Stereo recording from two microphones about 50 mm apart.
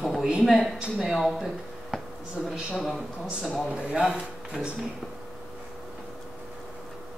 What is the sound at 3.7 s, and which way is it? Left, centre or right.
Speech, centre.